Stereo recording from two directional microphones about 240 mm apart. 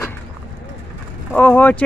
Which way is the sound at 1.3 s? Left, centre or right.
Centre.